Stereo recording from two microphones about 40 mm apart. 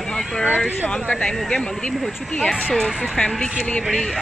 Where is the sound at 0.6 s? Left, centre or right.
Centre.